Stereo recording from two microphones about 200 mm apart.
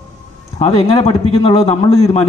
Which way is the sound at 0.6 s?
30° left (ahead or behind).